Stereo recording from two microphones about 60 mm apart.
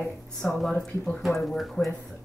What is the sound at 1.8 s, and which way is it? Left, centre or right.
Speech, left.